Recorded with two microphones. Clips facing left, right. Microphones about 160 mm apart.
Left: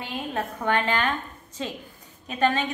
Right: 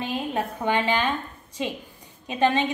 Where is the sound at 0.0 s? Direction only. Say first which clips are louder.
Right 3 dB; 15° right (ahead or behind).